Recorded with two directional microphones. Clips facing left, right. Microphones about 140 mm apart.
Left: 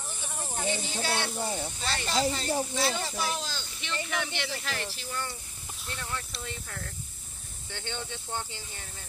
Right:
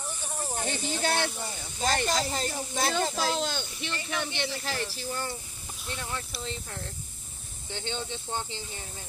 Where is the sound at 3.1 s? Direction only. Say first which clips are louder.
Right 4 dB; 80° right.